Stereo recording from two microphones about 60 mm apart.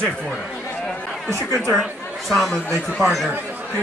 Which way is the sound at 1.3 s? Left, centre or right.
Right.